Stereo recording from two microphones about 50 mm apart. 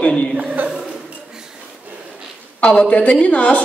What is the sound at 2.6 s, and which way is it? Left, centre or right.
Speech, left.